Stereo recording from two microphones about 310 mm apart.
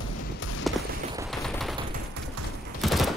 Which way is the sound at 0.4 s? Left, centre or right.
Left.